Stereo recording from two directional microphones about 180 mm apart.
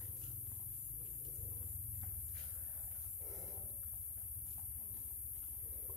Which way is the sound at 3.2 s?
Centre (ahead or behind).